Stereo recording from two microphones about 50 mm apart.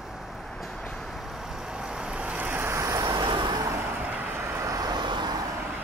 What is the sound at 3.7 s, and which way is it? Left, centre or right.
Vehicle, right.